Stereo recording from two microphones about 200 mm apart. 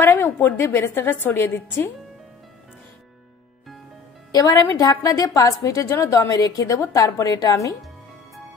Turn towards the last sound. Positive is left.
turn(degrees=15)  # may be behind; listen again after turning